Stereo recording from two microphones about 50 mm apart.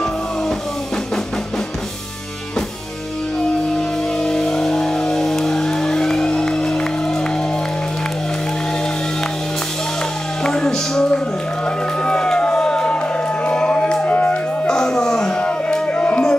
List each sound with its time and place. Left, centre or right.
4.2 s vehicle: centre
10.4 s music: centre
11.6 s a sound: centre
14.0 s music: left
14.7 s music: centre